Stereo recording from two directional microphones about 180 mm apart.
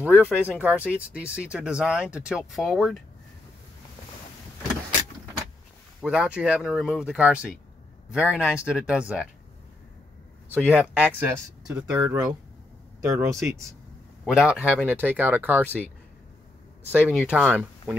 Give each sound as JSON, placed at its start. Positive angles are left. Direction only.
{"t": 0.0, "sound": "speech", "side_deg": -5}
{"t": 6.0, "sound": "speech", "side_deg": -5}
{"t": 10.6, "sound": "speech", "side_deg": -5}
{"t": 13.0, "sound": "speech", "side_deg": -15}
{"t": 14.2, "sound": "speech", "side_deg": -5}
{"t": 16.9, "sound": "speech", "side_deg": -5}